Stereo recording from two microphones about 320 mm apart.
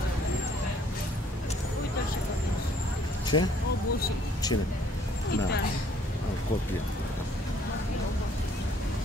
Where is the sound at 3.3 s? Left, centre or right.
Left.